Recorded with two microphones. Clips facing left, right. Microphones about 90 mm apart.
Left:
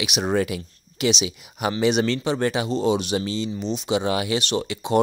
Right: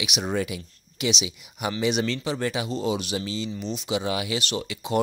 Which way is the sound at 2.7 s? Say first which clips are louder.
Left 5 dB; 30° left (ahead or behind).